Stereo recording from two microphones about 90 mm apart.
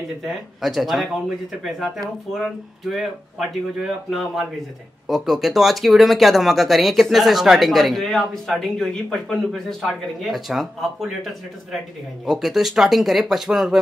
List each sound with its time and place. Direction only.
0.2 s speech: centre (ahead or behind)
12.3 s speech: 5° right (ahead or behind)